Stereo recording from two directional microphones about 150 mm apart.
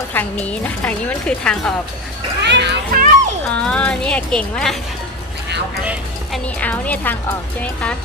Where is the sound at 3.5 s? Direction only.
10° left (ahead or behind).